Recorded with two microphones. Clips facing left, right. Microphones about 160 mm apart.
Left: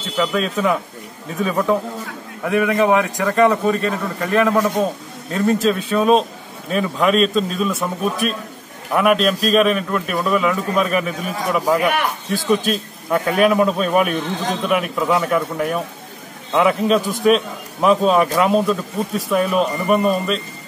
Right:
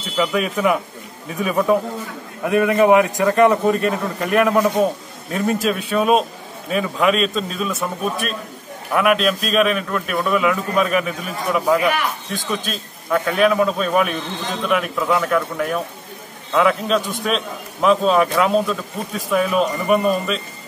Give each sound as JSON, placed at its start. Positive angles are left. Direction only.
{"t": 0.2, "sound": "a man's voice", "side_deg": -10}